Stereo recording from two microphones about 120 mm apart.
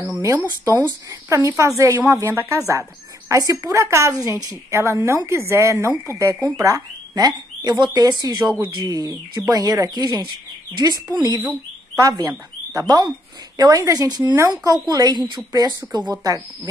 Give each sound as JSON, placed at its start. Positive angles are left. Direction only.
{"t": 0.5, "sound": "a woman's voice", "side_deg": -25}